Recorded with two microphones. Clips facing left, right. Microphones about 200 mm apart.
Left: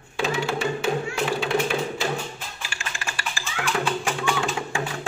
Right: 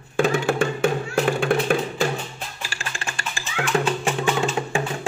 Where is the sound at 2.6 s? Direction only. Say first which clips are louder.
Right 1 dB; 40° right (ahead or behind).